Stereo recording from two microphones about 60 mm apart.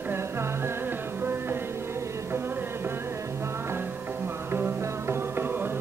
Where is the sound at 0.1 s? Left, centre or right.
Right.